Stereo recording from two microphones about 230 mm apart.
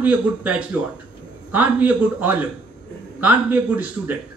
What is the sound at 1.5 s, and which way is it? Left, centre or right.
Speech, centre.